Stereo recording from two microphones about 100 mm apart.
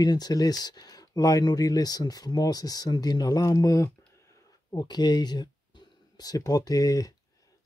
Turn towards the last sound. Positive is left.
turn(degrees=35)  # may be behind; listen again after turning